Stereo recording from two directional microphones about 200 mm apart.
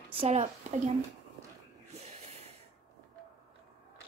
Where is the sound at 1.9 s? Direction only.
35° right (ahead or behind).